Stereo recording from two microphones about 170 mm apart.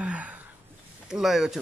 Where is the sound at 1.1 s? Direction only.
Centre (ahead or behind).